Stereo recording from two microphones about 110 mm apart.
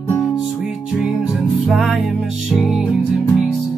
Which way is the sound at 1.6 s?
Centre (ahead or behind).